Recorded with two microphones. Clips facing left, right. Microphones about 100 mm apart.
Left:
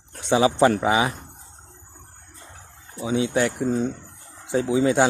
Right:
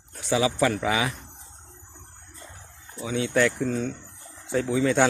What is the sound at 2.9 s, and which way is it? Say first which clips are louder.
A man's voice: left 2 dB; 20° left (ahead or behind).